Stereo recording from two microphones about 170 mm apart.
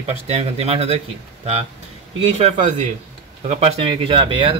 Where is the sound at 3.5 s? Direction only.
40° right (ahead or behind).